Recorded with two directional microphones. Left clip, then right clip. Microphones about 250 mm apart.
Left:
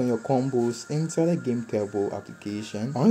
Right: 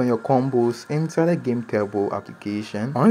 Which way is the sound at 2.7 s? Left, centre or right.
Right.